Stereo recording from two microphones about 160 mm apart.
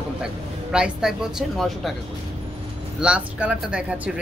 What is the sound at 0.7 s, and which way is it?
Speech, 5° right (ahead or behind).